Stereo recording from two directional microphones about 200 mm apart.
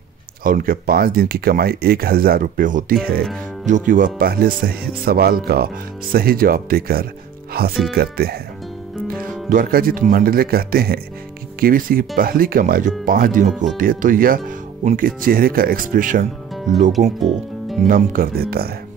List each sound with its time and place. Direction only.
0.4 s speech: 45° right (ahead or behind)
17.2 s speech: centre (ahead or behind)
17.8 s speech: 45° right (ahead or behind)